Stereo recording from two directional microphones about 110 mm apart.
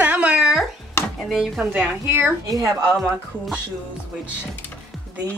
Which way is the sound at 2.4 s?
35° right (ahead or behind).